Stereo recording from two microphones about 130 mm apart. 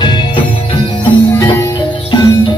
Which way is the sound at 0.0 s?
35° left (ahead or behind).